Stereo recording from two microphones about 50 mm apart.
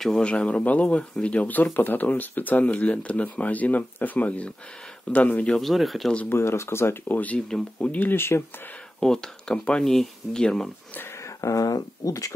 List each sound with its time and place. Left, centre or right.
0.2 s speech: left
5.6 s speech: centre
6.2 s speech: left
7.1 s speech: left
7.3 s speech: centre
7.9 s speech: left
9.0 s speech: centre
11.1 s a sound: left